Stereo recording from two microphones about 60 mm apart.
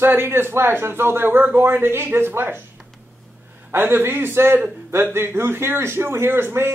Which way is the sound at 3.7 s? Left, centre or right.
Right.